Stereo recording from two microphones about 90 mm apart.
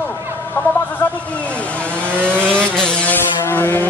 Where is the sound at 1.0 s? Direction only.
30° left (ahead or behind).